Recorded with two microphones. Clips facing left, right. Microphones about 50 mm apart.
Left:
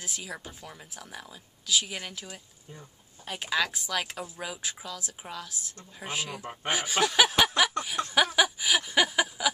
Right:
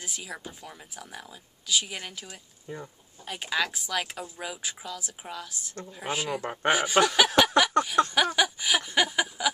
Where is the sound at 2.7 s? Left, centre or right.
Right.